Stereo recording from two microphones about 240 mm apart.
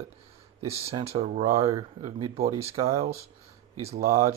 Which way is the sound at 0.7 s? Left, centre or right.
Centre.